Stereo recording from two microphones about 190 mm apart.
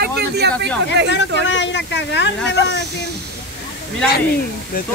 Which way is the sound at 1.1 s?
70° left (ahead or behind).